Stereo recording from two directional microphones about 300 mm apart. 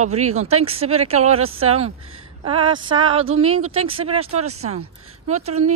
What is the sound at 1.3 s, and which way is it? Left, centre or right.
Speech, right.